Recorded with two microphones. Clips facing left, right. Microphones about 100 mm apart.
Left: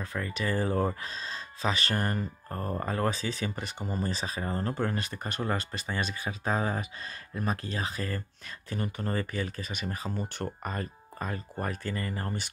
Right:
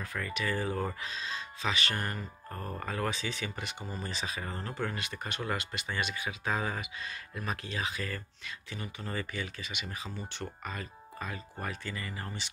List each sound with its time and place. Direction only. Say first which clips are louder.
0.0 s speech: left 2 dB; 30° left (ahead or behind); by 12.4 s 45° left (ahead or behind)